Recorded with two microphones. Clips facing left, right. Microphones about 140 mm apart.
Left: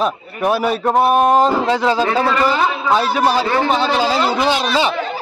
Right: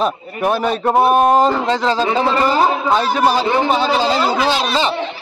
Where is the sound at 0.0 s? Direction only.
5° left (ahead or behind).